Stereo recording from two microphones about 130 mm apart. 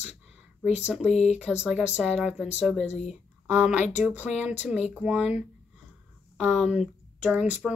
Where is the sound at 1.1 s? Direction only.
55° left (ahead or behind).